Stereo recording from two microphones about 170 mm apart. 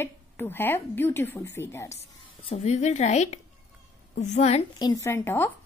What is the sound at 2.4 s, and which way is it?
Speech, 40° left (ahead or behind).